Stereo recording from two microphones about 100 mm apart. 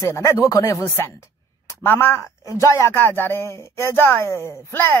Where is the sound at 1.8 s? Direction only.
20° left (ahead or behind).